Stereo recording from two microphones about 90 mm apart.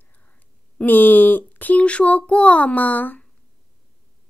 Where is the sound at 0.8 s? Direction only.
20° left (ahead or behind).